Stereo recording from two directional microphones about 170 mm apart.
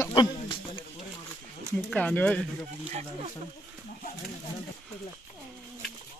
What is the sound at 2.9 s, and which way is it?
Speech, 40° right (ahead or behind).